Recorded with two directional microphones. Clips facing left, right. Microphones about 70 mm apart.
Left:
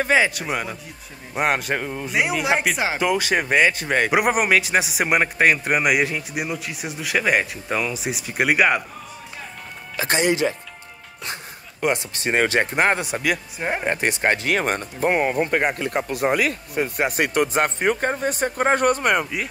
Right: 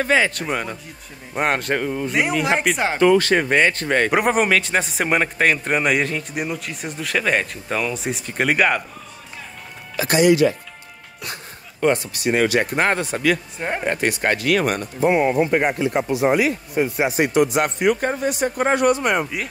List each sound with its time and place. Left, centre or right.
0.0 s speech: centre
9.9 s speech: left
11.8 s speech: centre
12.2 s speech: left
12.7 s speech: centre
13.9 s speech: left
15.0 s speech: right
15.8 s speech: left
17.5 s speech: left
19.3 s speech: centre